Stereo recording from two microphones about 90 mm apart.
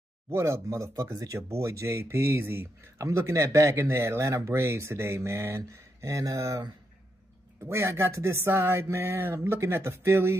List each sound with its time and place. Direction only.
0.3 s speech: 30° right (ahead or behind)
7.6 s speech: 30° right (ahead or behind)